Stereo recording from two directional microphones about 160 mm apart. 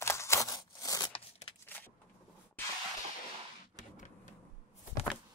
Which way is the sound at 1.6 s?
10° left (ahead or behind).